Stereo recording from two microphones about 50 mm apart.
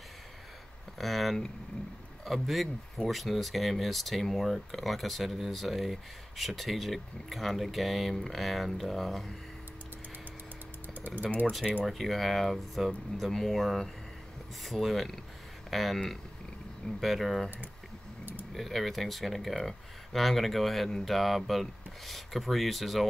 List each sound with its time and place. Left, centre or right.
0.9 s speech: centre
11.0 s speech: right
11.8 s speech: centre
17.0 s speech: centre
18.5 s speech: centre